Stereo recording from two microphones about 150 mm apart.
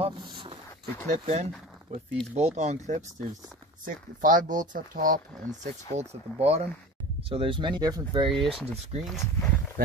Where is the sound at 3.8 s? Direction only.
65° right (ahead or behind).